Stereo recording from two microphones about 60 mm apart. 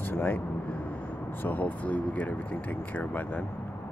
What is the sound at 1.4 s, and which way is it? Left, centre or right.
Speech, left.